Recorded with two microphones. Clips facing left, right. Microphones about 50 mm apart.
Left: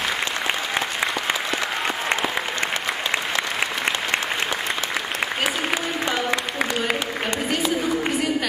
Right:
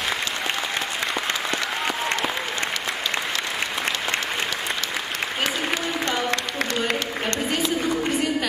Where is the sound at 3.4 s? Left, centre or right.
Left.